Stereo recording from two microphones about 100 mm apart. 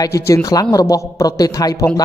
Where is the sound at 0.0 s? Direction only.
35° left (ahead or behind).